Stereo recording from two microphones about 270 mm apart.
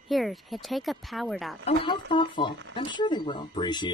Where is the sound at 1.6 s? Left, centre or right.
Left.